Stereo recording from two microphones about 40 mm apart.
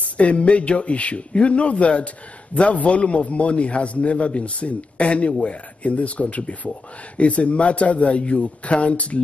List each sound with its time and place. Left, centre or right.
0.0 s a man's voice: left